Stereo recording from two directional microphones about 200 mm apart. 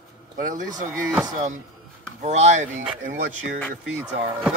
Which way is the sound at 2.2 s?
35° right (ahead or behind).